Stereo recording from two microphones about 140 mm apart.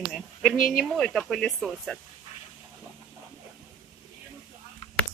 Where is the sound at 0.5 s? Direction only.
80° left.